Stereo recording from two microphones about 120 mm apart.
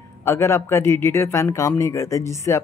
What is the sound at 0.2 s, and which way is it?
A woman's voice, 25° left (ahead or behind).